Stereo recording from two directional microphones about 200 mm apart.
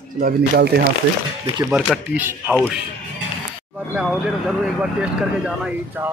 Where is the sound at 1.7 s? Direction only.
5° right (ahead or behind).